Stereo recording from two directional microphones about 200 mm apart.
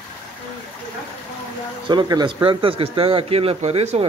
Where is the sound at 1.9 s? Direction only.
20° right (ahead or behind).